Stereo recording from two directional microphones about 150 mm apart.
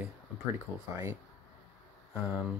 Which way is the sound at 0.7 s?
15° right (ahead or behind).